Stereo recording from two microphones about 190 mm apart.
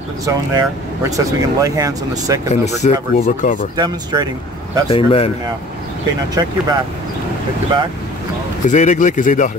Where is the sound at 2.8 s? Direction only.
40° left (ahead or behind).